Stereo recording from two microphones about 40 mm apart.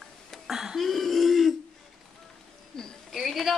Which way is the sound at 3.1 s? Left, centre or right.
Centre.